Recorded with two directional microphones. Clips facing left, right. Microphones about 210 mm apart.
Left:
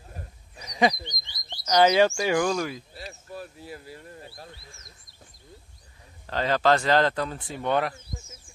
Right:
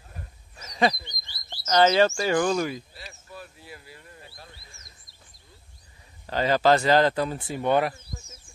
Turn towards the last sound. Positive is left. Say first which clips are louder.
# right 3 dB
turn(degrees=-5)  # may be behind; listen again after turning